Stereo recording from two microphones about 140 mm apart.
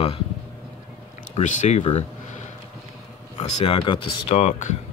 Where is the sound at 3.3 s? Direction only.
40° left (ahead or behind).